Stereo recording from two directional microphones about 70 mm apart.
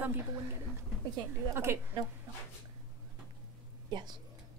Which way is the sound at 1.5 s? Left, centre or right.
Right.